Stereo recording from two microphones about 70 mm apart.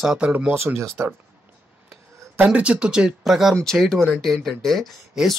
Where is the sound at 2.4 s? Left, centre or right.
Centre.